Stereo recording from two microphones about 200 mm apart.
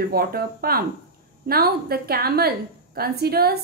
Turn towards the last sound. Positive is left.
turn(degrees=-50)  # may be behind; listen again after turning